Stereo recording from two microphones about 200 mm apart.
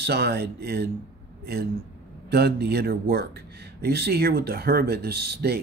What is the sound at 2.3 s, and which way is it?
Speech, 55° right (ahead or behind).